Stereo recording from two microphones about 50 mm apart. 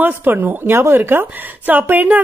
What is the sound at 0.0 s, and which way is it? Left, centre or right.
A woman's voice, right.